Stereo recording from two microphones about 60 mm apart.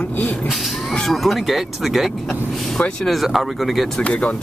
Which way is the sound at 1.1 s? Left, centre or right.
Centre.